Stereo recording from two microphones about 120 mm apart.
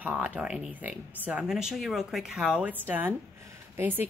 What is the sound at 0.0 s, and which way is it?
Speech, 10° right (ahead or behind).